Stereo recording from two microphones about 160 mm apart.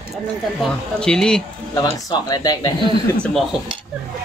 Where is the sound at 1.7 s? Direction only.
25° left (ahead or behind).